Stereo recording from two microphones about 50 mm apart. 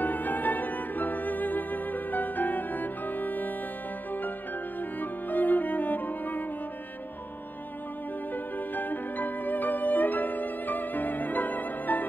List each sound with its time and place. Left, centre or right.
0.0 s music: left
5.0 s music: left
8.5 s music: left